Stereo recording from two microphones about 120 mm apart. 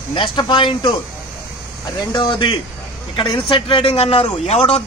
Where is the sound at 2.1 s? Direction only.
40° left (ahead or behind); by 4.8 s 60° left (ahead or behind).